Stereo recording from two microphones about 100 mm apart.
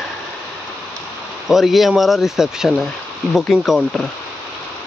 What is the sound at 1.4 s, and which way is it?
Speech, centre (ahead or behind).